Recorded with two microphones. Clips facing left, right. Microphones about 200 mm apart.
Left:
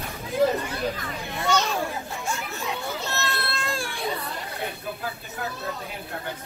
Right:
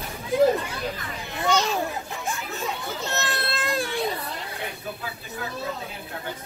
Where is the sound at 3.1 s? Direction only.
20° right (ahead or behind).